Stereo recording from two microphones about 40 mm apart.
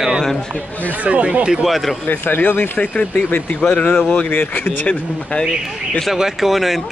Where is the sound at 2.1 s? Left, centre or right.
Left.